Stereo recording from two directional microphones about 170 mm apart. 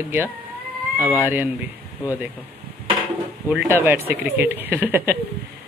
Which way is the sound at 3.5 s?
5° right (ahead or behind).